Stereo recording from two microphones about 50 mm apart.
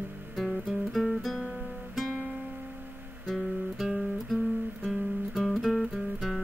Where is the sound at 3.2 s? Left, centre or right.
Centre.